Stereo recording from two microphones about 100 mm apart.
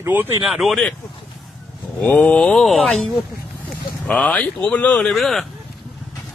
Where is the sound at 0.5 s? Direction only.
Centre (ahead or behind).